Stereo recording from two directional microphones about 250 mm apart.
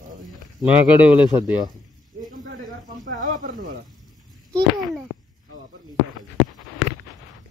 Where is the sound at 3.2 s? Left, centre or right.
Right.